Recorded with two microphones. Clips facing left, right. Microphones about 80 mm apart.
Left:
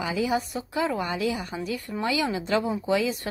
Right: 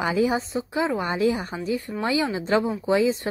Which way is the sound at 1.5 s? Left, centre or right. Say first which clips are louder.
Right 3 dB; right.